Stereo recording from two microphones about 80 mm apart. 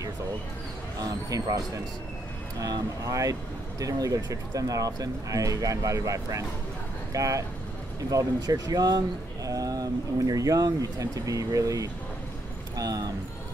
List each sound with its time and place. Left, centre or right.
0.9 s speech: right
2.6 s speech: right